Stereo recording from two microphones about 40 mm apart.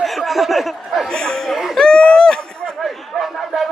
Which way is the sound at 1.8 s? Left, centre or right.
Left.